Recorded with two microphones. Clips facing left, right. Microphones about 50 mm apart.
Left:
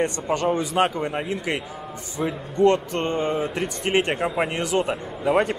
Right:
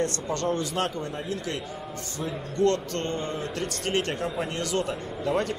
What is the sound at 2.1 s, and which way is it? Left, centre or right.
A man's voice, centre.